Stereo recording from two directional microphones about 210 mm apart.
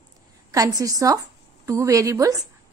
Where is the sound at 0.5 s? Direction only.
15° right (ahead or behind).